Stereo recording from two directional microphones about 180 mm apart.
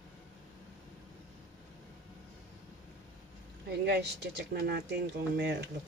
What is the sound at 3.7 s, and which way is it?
Speech, 70° right (ahead or behind).